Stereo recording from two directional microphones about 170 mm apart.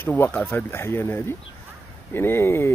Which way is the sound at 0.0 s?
10° left (ahead or behind).